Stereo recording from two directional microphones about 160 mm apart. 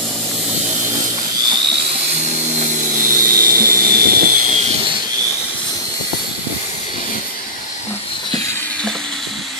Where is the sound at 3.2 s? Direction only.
65° right (ahead or behind).